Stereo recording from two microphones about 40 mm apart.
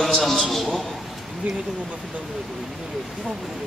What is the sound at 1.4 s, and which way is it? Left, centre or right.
Speech, right.